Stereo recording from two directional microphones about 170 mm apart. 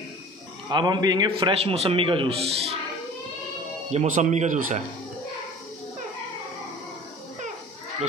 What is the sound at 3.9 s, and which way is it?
Speech, 40° right (ahead or behind).